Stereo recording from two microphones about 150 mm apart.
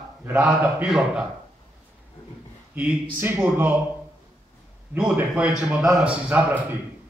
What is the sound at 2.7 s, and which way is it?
A man's voice, 10° right (ahead or behind).